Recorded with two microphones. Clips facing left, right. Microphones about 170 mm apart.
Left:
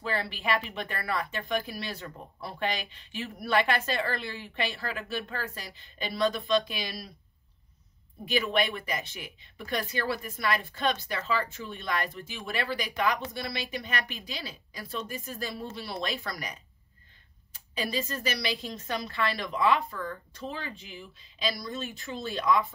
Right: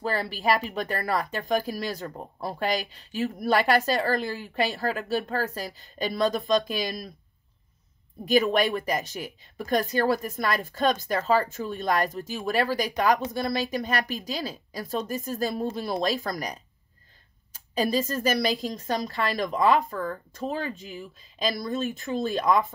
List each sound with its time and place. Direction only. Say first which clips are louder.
0.0 s speech: right 5 dB; 40° right (ahead or behind)
8.3 s a woman's voice: right 6 dB; 40° right (ahead or behind)